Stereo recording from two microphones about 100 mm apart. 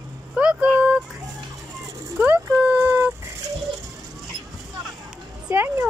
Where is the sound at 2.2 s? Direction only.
15° right (ahead or behind).